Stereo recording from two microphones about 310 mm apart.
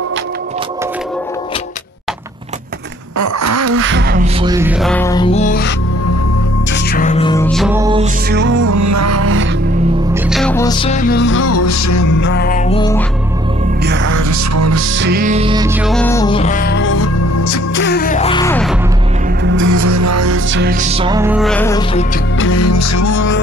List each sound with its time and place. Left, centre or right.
3.2 s a sound: right
4.4 s music: centre; by 5.7 s left
6.7 s music: left; by 8.1 s centre
8.3 s music: right
8.5 s music: right
10.1 s music: centre; by 12.1 s left
12.2 s music: left; by 13.0 s centre
13.8 s music: right
14.1 s music: right
15.0 s music: right; by 18.8 s centre
19.6 s music: right
20.7 s music: right; by 21.8 s centre
22.4 s music: left